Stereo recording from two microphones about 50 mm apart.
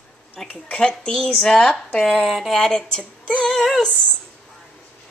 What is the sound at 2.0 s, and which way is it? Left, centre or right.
Speech, centre.